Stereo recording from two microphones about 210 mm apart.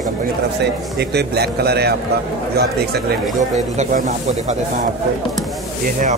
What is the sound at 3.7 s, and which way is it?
Speech, 35° right (ahead or behind).